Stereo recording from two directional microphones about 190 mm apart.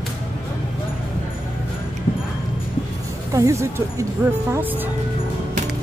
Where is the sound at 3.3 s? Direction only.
15° right (ahead or behind).